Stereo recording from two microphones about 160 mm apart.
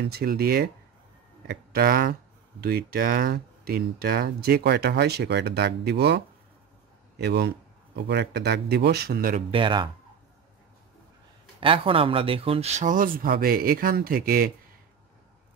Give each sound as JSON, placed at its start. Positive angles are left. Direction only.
{"t": 0.0, "sound": "speech", "side_deg": -75}
{"t": 1.7, "sound": "speech", "side_deg": -70}
{"t": 9.5, "sound": "speech", "side_deg": -30}
{"t": 11.6, "sound": "speech", "side_deg": -35}